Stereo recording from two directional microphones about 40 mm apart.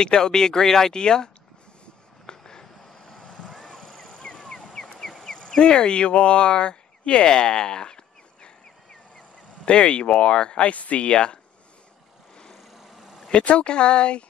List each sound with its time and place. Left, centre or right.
0.0 s speech: centre
2.2 s a sound: centre
3.3 s vehicle: centre
3.8 s vehicle: centre
4.1 s vehicle: left
4.9 s a sound: centre
9.7 s speech: left
10.7 s speech: left
13.3 s speech: left